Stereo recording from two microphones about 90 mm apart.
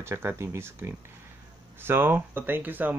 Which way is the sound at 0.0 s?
25° right (ahead or behind).